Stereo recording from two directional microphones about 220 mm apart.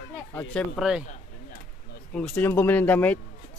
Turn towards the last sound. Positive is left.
turn(degrees=10)  # may be behind; listen again after turning